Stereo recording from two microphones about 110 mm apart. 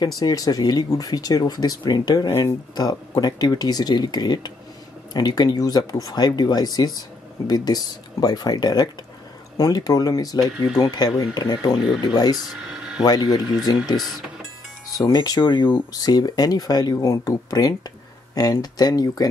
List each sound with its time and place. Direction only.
0.2 s speech: 35° left (ahead or behind)
12.4 s speech: 5° right (ahead or behind)
13.0 s speech: 35° left (ahead or behind)
15.0 s speech: 35° left (ahead or behind)